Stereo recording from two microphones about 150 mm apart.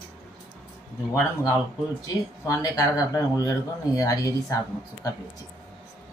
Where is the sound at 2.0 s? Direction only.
20° left (ahead or behind).